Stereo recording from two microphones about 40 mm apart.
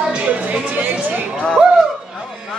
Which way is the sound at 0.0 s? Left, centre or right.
Right.